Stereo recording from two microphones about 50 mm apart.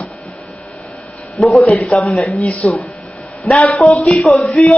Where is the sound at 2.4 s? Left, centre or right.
Left.